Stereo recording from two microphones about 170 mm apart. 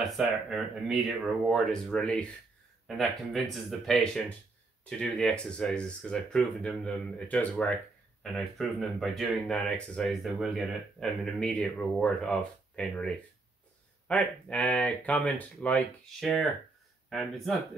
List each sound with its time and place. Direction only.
0.0 s speech: 5° right (ahead or behind)
3.8 s speech: 5° left (ahead or behind)